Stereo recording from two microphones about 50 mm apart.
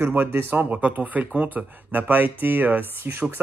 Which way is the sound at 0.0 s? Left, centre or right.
Right.